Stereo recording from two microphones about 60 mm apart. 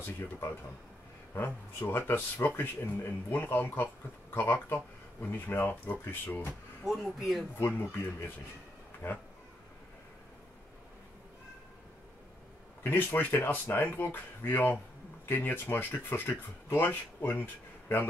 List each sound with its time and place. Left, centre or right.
1.3 s speech: left
6.8 s speech: centre
7.5 s speech: left
9.0 s speech: left
12.8 s speech: left